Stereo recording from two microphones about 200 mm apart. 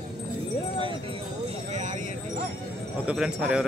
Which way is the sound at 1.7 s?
40° right (ahead or behind).